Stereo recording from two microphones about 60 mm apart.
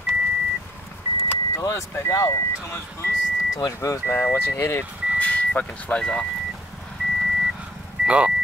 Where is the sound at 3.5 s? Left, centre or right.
Left.